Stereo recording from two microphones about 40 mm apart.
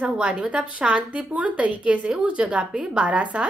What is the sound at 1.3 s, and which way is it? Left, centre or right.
Speech, right.